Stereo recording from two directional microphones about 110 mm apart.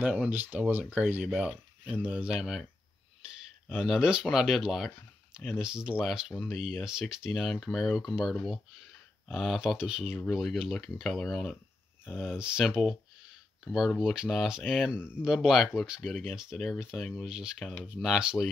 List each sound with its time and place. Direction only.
0.0 s speech: 15° right (ahead or behind)
3.7 s speech: 5° right (ahead or behind)